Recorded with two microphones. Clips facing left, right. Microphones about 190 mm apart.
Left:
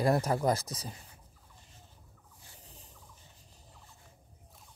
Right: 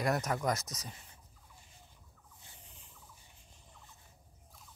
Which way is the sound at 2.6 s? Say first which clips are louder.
Left 4 dB; 35° left (ahead or behind).